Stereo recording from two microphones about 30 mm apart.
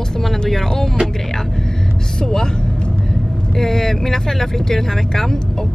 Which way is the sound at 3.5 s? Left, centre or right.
Centre.